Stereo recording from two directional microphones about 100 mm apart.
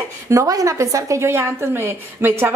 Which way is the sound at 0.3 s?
35° right (ahead or behind).